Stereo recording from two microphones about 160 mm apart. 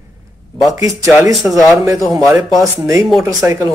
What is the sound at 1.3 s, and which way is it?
Speech, centre (ahead or behind).